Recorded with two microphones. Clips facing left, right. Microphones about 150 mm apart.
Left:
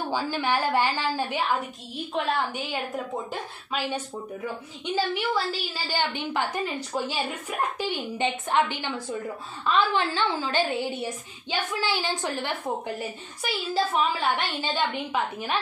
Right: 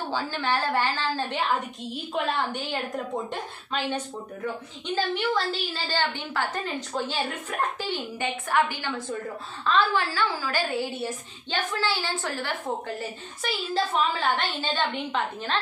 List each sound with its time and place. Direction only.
0.1 s a woman's voice: 15° left (ahead or behind)
13.4 s a woman's voice: 10° left (ahead or behind)